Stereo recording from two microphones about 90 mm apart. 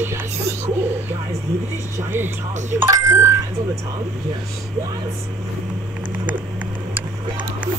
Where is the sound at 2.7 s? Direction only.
30° right (ahead or behind).